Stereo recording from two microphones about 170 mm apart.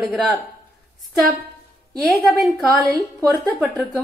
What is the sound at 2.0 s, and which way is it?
A woman's voice, centre (ahead or behind).